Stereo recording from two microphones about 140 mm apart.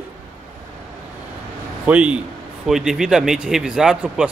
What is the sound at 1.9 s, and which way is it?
A man's voice, 10° right (ahead or behind).